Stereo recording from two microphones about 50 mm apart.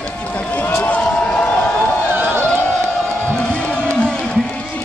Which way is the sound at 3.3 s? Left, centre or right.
Left.